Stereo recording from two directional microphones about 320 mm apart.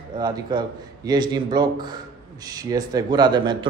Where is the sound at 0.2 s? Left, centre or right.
Centre.